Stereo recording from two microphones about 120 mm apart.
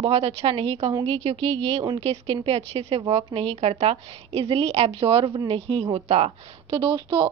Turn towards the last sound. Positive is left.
turn(degrees=-35)  # may be behind; listen again after turning